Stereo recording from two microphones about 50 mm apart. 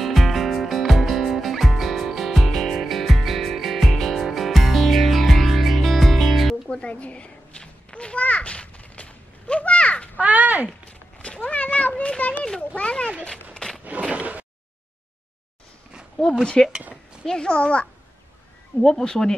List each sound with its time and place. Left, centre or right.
0.0 s music: centre
6.7 s children playing: left
10.1 s crow: right
10.9 s cat: left
12.0 s children playing: left
12.7 s a sound: left
14.1 s a sound: right
16.6 s a child's voice: centre
18.8 s speech: centre